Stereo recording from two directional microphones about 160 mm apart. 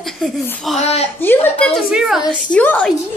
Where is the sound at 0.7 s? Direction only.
40° left (ahead or behind).